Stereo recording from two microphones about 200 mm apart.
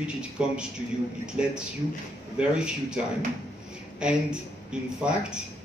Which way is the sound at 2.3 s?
5° right (ahead or behind).